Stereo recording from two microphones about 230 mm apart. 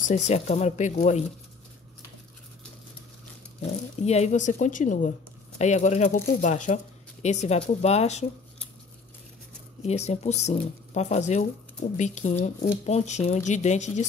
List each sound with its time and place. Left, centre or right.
0.1 s speech: left
4.0 s a woman's voice: left
9.8 s a woman's voice: left